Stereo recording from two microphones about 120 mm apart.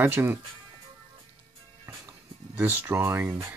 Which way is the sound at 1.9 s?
20° right (ahead or behind).